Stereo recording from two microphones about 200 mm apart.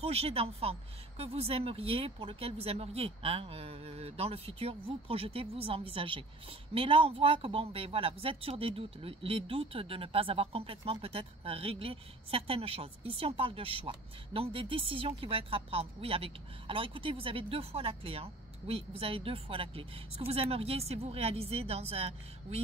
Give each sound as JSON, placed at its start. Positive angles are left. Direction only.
{"t": 0.0, "sound": "speech", "side_deg": -30}